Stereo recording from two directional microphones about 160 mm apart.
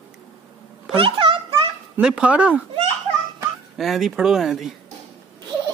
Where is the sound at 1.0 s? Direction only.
35° right (ahead or behind).